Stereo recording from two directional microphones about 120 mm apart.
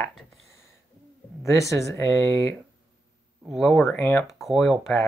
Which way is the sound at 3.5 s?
Centre (ahead or behind).